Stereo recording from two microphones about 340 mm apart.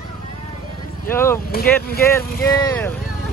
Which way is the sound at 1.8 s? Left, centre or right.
Left.